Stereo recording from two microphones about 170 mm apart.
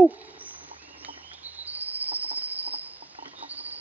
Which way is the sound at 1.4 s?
10° right (ahead or behind).